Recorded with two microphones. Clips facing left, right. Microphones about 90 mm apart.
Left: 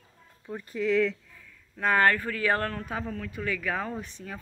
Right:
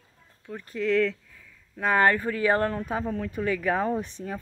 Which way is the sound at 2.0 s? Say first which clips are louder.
Right 4 dB; 20° right (ahead or behind).